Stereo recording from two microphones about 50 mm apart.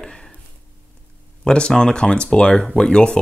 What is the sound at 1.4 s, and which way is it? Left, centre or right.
Speech, centre.